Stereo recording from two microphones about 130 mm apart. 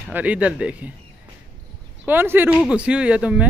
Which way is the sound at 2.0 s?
15° right (ahead or behind).